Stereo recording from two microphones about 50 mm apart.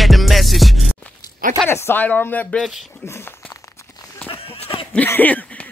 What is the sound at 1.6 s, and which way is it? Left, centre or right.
Speech, left.